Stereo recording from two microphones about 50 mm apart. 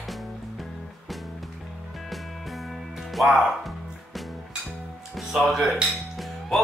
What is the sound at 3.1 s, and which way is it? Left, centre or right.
Speech, centre.